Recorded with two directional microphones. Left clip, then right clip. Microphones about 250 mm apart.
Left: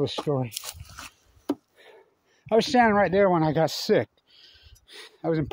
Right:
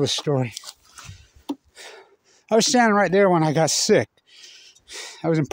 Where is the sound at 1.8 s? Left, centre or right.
Right.